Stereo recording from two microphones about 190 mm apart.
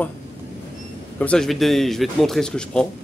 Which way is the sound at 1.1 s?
5° left (ahead or behind).